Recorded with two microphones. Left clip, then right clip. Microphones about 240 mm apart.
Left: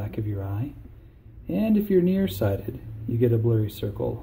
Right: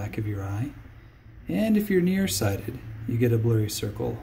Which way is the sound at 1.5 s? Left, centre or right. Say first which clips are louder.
Left 1 dB; right.